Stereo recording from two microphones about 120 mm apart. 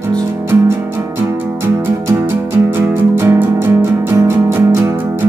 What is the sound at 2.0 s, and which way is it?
Music, 20° right (ahead or behind).